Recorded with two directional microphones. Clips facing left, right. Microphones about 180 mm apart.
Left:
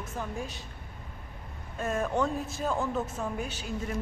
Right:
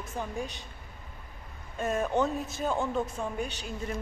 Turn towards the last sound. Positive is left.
turn(degrees=5)  # may be behind; listen again after turning